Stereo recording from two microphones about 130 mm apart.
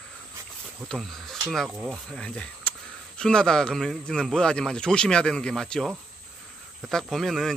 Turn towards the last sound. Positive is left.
turn(degrees=0)  # may be behind; listen again after turning